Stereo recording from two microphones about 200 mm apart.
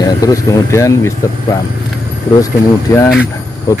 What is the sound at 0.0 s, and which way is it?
Speech, 15° left (ahead or behind).